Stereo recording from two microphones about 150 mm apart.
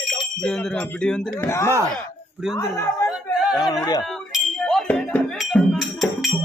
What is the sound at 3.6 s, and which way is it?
Speech, 25° left (ahead or behind).